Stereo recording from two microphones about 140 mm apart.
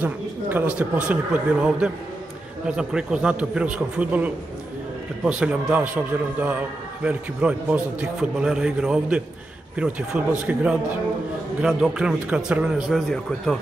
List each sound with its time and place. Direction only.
0.0 s a man's voice: 15° right (ahead or behind)